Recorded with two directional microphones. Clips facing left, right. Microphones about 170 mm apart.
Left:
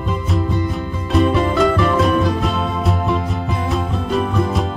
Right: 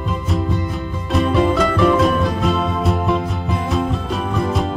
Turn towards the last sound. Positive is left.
turn(degrees=0)  # may be behind; listen again after turning